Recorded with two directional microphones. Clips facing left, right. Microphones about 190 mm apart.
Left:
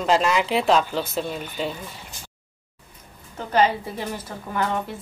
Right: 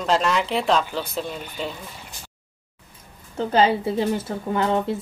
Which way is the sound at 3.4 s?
30° right (ahead or behind).